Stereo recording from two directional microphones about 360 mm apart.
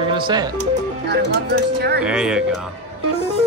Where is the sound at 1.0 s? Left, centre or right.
Right.